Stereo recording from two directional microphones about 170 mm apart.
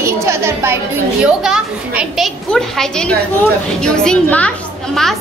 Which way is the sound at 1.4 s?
5° right (ahead or behind).